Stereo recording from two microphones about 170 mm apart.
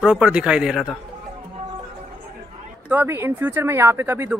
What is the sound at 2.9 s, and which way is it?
Speech, 10° right (ahead or behind).